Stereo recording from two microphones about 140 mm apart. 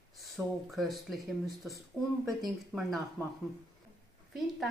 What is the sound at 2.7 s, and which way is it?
Speech, 5° right (ahead or behind).